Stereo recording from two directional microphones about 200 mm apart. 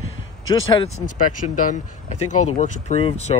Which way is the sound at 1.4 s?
40° left (ahead or behind).